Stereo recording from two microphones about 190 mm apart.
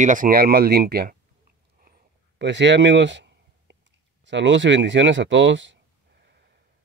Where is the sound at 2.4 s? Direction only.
70° right (ahead or behind).